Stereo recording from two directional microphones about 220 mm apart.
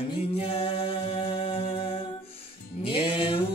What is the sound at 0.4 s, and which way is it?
Music, 25° left (ahead or behind).